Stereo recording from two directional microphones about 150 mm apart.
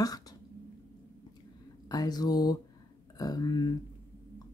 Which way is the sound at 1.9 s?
25° left (ahead or behind).